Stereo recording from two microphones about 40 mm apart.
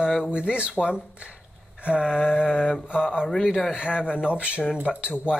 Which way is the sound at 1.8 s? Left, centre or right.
Right.